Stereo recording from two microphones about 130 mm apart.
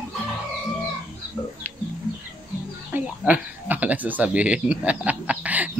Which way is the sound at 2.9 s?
15° right (ahead or behind).